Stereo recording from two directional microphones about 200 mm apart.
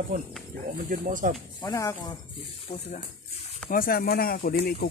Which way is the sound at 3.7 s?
45° left (ahead or behind).